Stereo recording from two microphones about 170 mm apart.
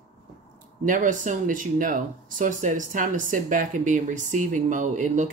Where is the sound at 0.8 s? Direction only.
50° right (ahead or behind).